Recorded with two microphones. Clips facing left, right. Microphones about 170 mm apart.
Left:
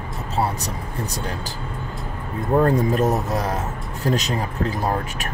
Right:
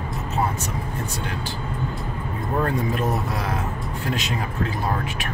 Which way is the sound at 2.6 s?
40° left (ahead or behind).